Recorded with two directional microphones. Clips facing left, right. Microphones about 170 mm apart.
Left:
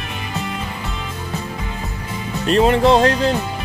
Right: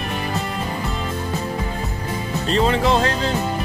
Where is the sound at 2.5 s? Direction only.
60° left (ahead or behind).